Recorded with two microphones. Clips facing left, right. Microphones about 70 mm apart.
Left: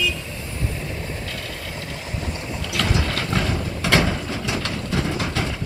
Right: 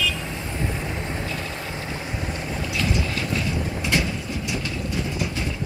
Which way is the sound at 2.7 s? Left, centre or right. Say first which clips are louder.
Left 3 dB; left.